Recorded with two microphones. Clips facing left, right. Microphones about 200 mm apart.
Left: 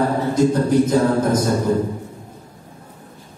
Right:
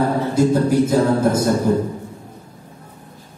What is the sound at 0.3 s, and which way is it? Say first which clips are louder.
Speech: even; 10° right (ahead or behind).